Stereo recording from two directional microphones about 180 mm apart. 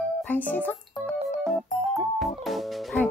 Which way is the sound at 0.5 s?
10° left (ahead or behind).